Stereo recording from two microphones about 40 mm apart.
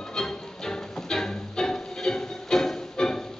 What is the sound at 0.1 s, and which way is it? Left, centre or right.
Music, centre.